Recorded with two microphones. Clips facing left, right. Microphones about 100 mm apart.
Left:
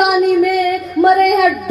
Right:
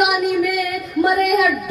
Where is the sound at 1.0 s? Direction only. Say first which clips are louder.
Left 6 dB; 50° left (ahead or behind).